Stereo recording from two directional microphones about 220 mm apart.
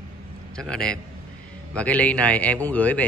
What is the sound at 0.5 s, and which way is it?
A man's voice, 5° left (ahead or behind).